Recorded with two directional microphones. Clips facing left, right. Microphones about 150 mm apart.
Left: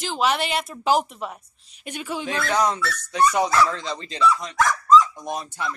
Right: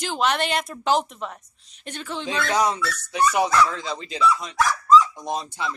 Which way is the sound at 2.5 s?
10° right (ahead or behind).